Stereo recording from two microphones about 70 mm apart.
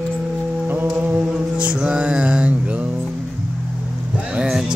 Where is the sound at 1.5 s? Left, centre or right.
Centre.